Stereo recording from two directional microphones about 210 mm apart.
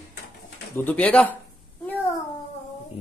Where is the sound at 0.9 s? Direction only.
5° left (ahead or behind).